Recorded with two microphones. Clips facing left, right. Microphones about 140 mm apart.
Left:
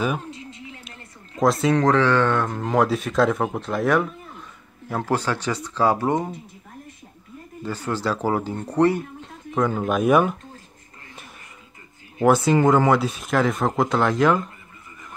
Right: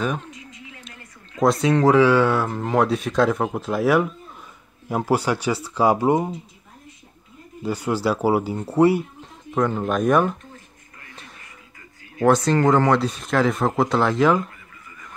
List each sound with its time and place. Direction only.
0.3 s a sound: 30° left (ahead or behind)
1.4 s speech: centre (ahead or behind)
7.6 s speech: 10° right (ahead or behind)
9.5 s speech: centre (ahead or behind)
12.3 s speech: 5° left (ahead or behind)